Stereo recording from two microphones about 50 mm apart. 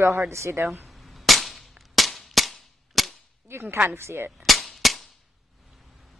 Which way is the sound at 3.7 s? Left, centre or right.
Right.